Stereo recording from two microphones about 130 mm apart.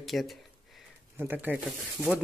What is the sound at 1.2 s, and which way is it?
Speech, 15° right (ahead or behind).